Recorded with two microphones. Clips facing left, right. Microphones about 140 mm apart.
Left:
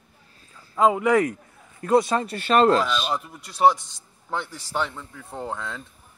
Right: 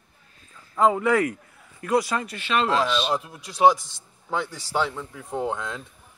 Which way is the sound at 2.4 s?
45° left (ahead or behind).